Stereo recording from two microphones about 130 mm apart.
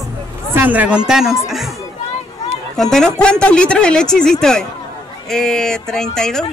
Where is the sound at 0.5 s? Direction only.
15° right (ahead or behind).